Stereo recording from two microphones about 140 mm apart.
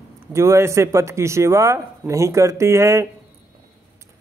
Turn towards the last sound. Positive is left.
turn(degrees=-20)  # may be behind; listen again after turning